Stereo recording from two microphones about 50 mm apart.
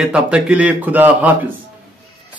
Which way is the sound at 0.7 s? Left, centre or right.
Right.